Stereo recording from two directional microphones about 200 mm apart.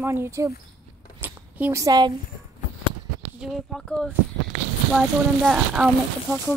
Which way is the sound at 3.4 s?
Centre (ahead or behind).